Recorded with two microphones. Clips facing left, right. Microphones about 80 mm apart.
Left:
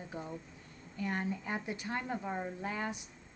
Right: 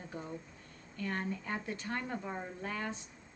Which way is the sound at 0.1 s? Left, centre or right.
Centre.